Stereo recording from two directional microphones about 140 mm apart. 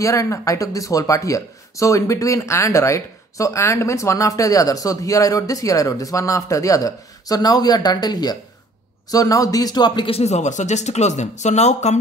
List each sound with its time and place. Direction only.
0.0 s speech: 20° left (ahead or behind); by 12.0 s 55° left (ahead or behind)